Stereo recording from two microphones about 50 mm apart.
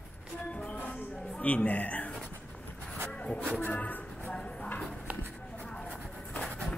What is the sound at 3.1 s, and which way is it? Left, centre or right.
Music, left.